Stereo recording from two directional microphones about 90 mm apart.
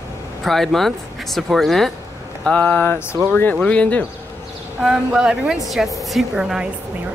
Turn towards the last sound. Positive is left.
turn(degrees=-10)  # may be behind; listen again after turning